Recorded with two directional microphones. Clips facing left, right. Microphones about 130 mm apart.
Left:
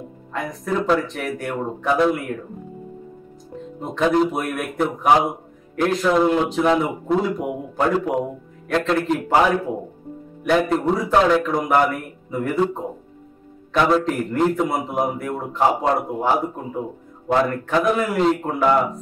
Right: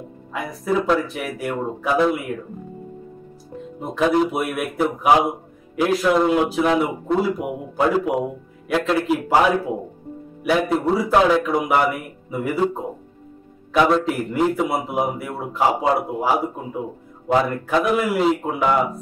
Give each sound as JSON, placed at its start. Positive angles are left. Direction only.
{"t": 0.3, "sound": "a man's voice", "side_deg": -5}
{"t": 3.8, "sound": "a man's voice", "side_deg": -5}